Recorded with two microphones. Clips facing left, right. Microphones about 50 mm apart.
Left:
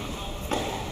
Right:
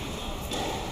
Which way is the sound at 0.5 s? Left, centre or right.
Left.